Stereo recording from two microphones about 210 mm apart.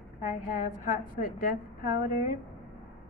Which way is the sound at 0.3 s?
40° left (ahead or behind).